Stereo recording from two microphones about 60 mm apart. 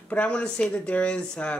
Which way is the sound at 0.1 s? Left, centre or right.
Left.